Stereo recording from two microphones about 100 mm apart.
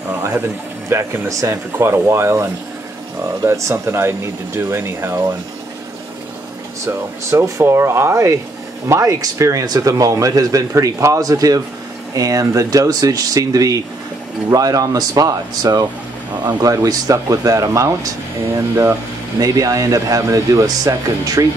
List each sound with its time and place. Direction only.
0.8 s speech: 25° right (ahead or behind)
3.4 s speech: 30° right (ahead or behind)
6.9 s a man's voice: 30° right (ahead or behind); by 16.7 s 45° right (ahead or behind)
16.7 s a man's voice: 35° right (ahead or behind)
19.4 s a man's voice: 35° right (ahead or behind)